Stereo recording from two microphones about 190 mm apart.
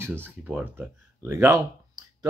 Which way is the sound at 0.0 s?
10° right (ahead or behind).